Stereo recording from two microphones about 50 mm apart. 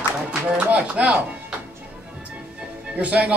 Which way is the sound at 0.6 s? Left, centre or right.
Right.